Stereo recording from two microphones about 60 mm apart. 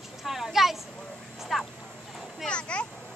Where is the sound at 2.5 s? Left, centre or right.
Centre.